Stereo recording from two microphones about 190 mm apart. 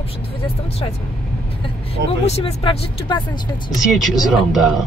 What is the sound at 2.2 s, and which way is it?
Speech, 30° left (ahead or behind).